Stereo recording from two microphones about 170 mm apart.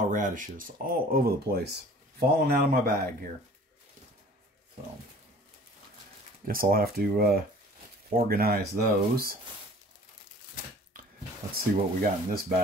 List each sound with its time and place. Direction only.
0.1 s speech: 50° right (ahead or behind)
6.4 s speech: 55° right (ahead or behind)
11.5 s speech: 60° right (ahead or behind)